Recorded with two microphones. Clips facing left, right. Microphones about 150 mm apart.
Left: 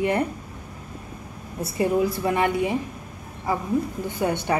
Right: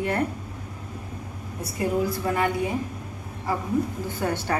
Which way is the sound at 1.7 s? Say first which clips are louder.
Left 3 dB; 20° left (ahead or behind).